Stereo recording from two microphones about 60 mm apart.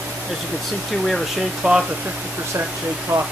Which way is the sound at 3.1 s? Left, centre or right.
Right.